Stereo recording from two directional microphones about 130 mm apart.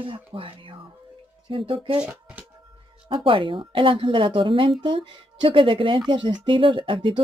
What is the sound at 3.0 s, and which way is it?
Speech, 40° right (ahead or behind).